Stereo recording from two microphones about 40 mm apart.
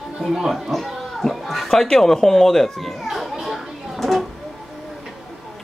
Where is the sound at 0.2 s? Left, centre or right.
Centre.